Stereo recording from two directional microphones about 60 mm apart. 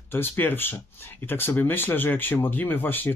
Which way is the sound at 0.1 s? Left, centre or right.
Left.